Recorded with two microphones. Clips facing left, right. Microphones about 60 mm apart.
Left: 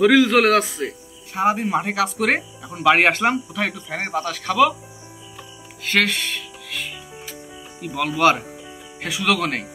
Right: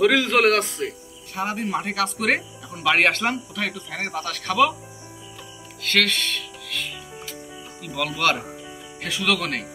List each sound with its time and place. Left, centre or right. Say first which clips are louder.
0.0 s a man's voice: left 3 dB; centre
1.3 s speech: left 6 dB; centre
5.8 s music: left 2 dB; centre
7.8 s speech: left 5 dB; centre